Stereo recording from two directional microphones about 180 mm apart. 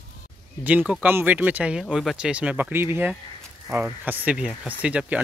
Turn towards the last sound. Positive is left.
turn(degrees=-5)  # may be behind; listen again after turning